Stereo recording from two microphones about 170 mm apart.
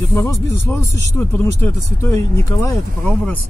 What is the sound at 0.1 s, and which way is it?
Speech, 15° left (ahead or behind).